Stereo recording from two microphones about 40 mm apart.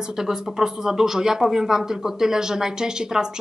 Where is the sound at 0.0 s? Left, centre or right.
Centre.